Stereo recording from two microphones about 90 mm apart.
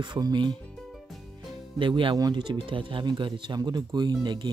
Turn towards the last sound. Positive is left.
turn(degrees=-55)  # may be behind; listen again after turning